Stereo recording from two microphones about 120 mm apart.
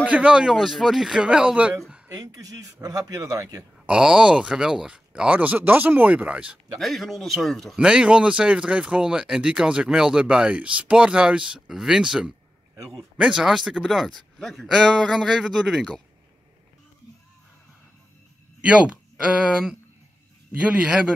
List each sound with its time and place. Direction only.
0.0 s speech: 10° right (ahead or behind)
2.1 s speech: 30° right (ahead or behind)
3.8 s speech: 5° right (ahead or behind)
6.8 s speech: centre (ahead or behind)
20.5 s speech: 10° right (ahead or behind)